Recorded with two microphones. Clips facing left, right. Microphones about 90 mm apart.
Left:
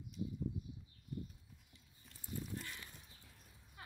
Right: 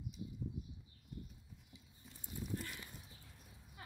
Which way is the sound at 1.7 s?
5° right (ahead or behind).